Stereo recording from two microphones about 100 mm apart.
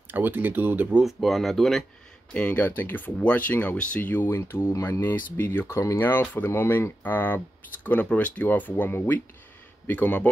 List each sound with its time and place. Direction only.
0.1 s speech: 20° right (ahead or behind)
1.0 s speech: centre (ahead or behind)
2.3 s speech: 15° left (ahead or behind)